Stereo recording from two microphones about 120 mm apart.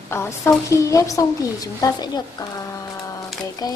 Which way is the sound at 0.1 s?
25° left (ahead or behind).